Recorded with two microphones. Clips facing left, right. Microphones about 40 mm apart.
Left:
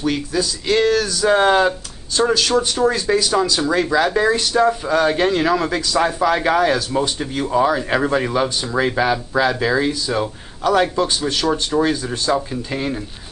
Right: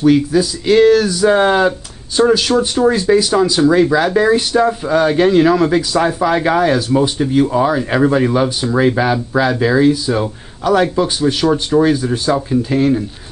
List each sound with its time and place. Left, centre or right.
0.0 s speech: centre
4.4 s speech: centre
4.6 s speech: centre